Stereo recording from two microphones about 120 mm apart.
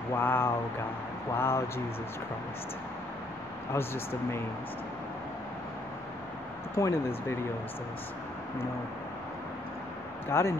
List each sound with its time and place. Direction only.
0.1 s speech: 20° left (ahead or behind)
3.7 s speech: 20° left (ahead or behind)
6.7 s speech: 25° left (ahead or behind)
10.2 s speech: 20° left (ahead or behind)